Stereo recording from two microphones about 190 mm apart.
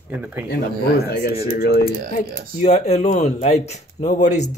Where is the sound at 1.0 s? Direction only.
60° left (ahead or behind).